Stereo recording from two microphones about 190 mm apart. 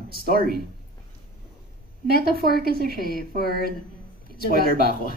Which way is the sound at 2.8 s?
55° left (ahead or behind).